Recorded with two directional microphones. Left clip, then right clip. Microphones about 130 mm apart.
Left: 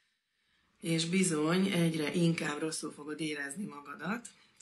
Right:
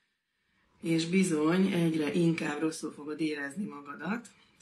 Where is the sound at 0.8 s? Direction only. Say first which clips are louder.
Right 3 dB; 30° left (ahead or behind).